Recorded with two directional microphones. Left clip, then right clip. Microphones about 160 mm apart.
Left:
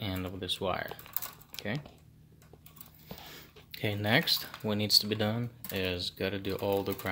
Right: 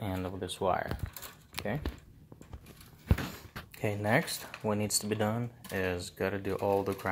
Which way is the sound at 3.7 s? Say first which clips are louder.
Left 1 dB; 20° left (ahead or behind).